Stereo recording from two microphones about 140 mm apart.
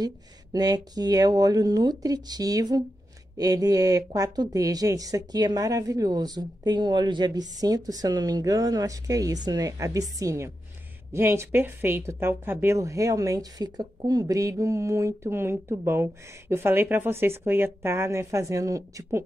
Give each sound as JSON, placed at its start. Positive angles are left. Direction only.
{"t": 0.0, "sound": "speech", "side_deg": -30}